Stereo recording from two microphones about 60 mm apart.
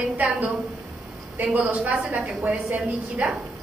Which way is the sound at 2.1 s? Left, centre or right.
Right.